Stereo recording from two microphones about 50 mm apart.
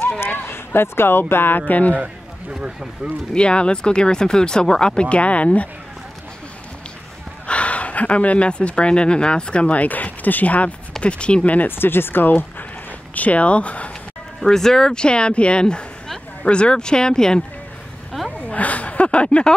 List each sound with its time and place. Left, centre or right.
0.2 s speech: left
1.7 s a man's voice: left
3.0 s speech: right
3.3 s speech: centre
7.4 s speech: left
11.6 s speech: left
13.1 s speech: left
14.4 s speech: centre
18.1 s a sound: centre
18.5 s speech: left